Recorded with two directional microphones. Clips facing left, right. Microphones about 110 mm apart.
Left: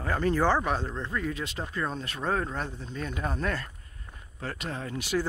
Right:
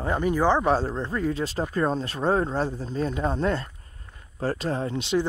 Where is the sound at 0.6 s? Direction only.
35° right (ahead or behind).